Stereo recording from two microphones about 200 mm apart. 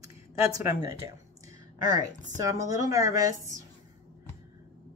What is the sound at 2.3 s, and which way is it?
Speech, 15° right (ahead or behind).